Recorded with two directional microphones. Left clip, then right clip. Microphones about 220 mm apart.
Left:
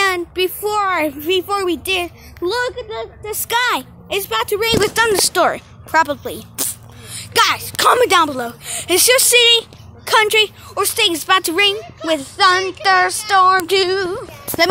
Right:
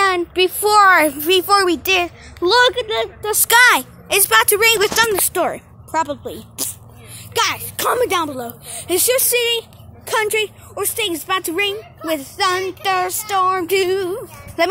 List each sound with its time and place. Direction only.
0.3 s speech: 5° right (ahead or behind)
2.6 s speech: 35° right (ahead or behind)
3.4 s speech: 5° right (ahead or behind)
5.2 s speech: 10° right (ahead or behind)